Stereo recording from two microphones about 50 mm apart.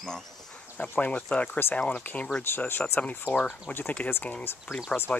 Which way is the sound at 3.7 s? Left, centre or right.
Left.